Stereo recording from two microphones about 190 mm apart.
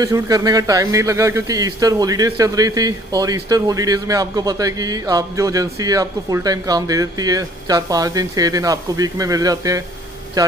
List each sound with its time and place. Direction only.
0.0 s speech: 15° right (ahead or behind)